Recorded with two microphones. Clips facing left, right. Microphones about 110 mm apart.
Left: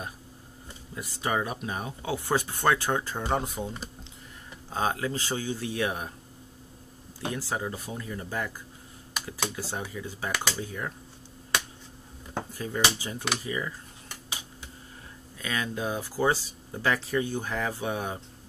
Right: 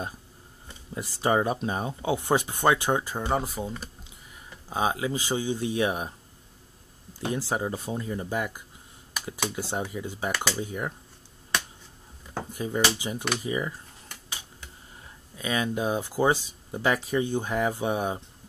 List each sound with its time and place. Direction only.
0.9 s speech: 25° right (ahead or behind)
7.2 s speech: 25° right (ahead or behind)
12.5 s speech: 20° right (ahead or behind)
15.3 s speech: 20° right (ahead or behind)